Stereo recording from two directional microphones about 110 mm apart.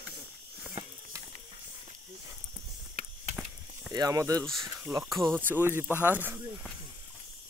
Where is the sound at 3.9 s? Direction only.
35° right (ahead or behind).